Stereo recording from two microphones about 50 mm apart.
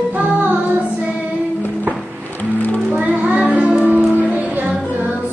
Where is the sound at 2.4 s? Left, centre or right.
Left.